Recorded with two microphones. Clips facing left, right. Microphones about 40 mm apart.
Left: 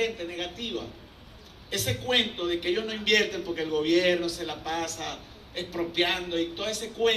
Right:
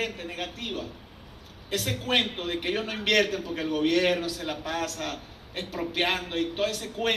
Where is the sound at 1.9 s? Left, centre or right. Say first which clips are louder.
Even; right.